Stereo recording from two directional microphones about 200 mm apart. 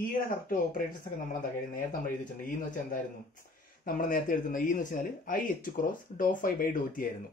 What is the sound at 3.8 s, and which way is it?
Speech, 45° left (ahead or behind).